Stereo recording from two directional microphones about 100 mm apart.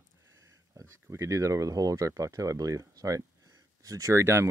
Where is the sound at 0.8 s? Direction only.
30° right (ahead or behind).